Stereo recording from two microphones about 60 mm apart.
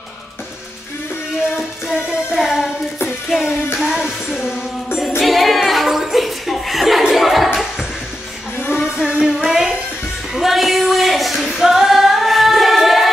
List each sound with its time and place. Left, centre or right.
2.3 s child singing: centre
3.3 s music: centre
5.2 s a sound: centre
8.5 s music: left
8.9 s music: centre
10.3 s female singing: centre